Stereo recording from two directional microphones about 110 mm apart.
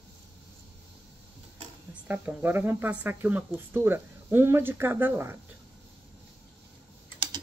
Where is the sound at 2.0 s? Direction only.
15° right (ahead or behind).